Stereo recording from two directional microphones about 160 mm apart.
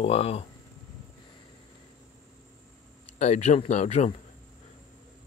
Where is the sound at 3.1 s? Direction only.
45° left (ahead or behind).